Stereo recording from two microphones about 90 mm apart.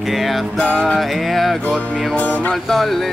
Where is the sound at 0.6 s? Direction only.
10° left (ahead or behind).